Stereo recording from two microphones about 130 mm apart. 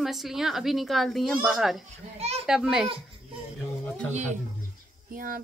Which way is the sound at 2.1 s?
55° right (ahead or behind).